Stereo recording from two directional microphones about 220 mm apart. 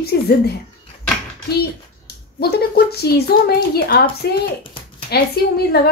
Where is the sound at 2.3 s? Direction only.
45° left (ahead or behind).